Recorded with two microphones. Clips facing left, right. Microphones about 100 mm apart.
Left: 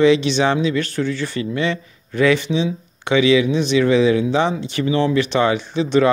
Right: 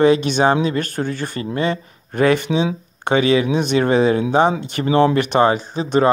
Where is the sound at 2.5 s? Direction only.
65° right (ahead or behind).